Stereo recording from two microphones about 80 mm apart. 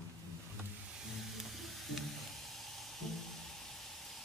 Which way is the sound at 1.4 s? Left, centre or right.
Centre.